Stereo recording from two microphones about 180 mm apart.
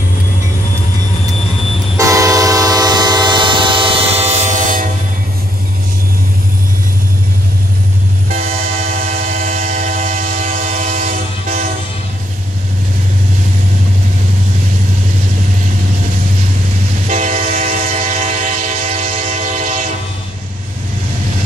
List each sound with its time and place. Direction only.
2.0 s train: 20° right (ahead or behind); by 4.8 s 45° right (ahead or behind)
8.3 s train: 50° right (ahead or behind)
17.1 s train: 45° right (ahead or behind)